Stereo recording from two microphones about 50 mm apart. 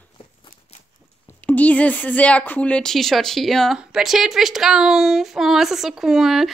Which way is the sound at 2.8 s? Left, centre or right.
Centre.